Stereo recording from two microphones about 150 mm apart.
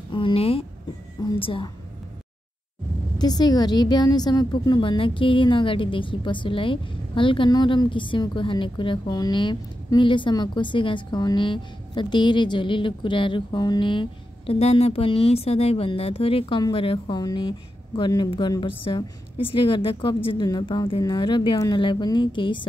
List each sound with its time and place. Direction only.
0.1 s a woman's voice: 35° left (ahead or behind)
3.2 s a woman's voice: 30° left (ahead or behind)